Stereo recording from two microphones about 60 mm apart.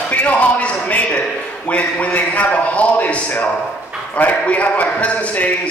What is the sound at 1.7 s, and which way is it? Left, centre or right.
A man's voice, left.